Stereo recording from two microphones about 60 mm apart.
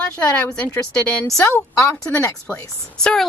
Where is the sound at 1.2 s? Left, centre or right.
Left.